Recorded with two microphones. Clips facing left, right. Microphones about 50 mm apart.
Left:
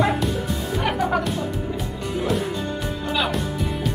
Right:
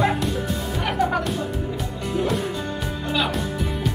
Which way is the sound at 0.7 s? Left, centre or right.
Centre.